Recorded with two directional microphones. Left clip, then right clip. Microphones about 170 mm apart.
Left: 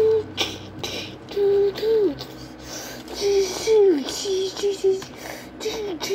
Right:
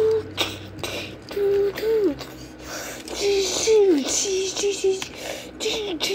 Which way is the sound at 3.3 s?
Centre (ahead or behind).